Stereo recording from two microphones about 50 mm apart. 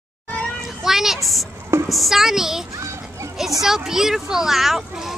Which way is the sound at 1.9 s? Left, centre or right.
Centre.